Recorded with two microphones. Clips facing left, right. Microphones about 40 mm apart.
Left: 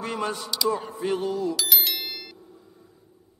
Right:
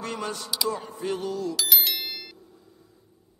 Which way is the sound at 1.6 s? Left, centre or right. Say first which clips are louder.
Even; centre.